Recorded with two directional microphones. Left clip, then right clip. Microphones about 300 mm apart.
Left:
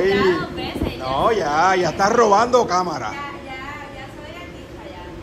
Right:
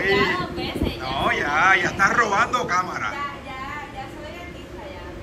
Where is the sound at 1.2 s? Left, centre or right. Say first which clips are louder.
Left 2 dB; left.